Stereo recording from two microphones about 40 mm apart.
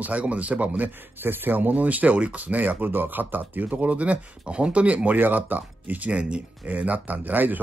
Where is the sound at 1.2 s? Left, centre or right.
Right.